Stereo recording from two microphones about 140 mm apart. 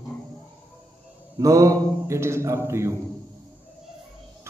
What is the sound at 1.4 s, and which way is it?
A man's voice, 25° right (ahead or behind).